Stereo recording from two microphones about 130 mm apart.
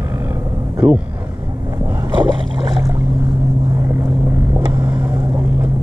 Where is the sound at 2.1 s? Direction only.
40° right (ahead or behind).